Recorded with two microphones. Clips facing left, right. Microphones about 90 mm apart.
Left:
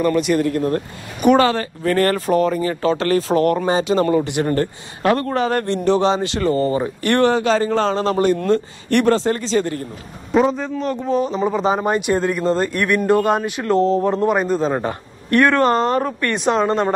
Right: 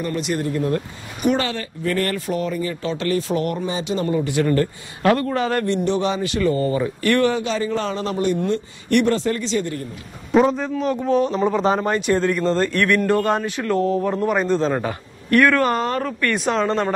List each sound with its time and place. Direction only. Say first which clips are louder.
0.0 s speech: left 7 dB; 65° left (ahead or behind)
0.6 s speech: left 2 dB; 45° left (ahead or behind)
4.4 s a man's voice: even; 30° left (ahead or behind)
10.3 s a man's voice: even; centre (ahead or behind)
11.8 s speech: left 1 dB; 15° left (ahead or behind)
14.4 s speech: left 1 dB; 10° left (ahead or behind)
14.8 s speech: left 2 dB; 30° left (ahead or behind)